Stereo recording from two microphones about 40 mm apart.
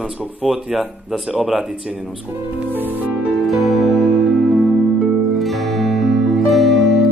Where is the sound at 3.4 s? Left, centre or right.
Centre.